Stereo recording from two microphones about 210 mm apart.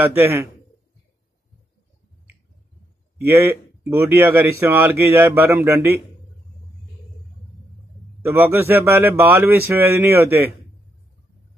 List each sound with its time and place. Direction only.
0.0 s a man's voice: 10° right (ahead or behind)
3.3 s a man's voice: 10° right (ahead or behind)
8.2 s a man's voice: 10° right (ahead or behind)